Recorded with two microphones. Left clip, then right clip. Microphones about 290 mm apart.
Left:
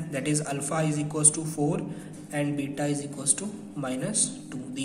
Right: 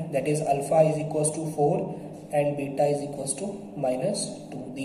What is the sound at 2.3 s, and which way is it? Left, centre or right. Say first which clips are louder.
A man's voice: right 5 dB; left.